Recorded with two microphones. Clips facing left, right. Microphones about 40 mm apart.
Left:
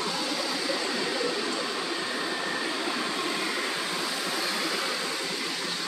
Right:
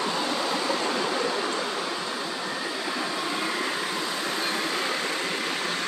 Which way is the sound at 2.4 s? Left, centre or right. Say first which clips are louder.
Even; centre.